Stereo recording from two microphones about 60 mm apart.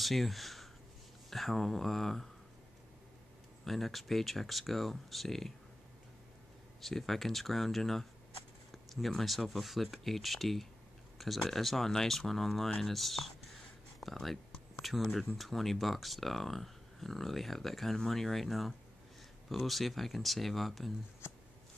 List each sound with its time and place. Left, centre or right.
0.0 s speech: centre
3.6 s speech: centre
6.8 s speech: centre
21.2 s a sound: left